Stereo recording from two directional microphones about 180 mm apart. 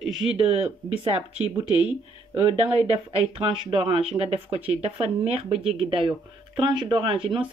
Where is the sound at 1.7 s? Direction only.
10° right (ahead or behind).